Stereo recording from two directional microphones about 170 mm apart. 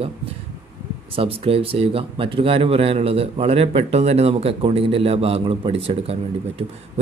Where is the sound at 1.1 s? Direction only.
35° right (ahead or behind).